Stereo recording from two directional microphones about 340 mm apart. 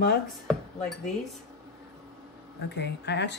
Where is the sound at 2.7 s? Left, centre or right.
Left.